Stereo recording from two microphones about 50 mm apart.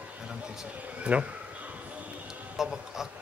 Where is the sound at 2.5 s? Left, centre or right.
Centre.